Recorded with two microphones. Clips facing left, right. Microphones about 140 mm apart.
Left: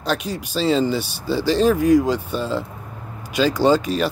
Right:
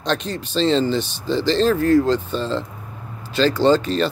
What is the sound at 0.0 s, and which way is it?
Speech, 10° left (ahead or behind).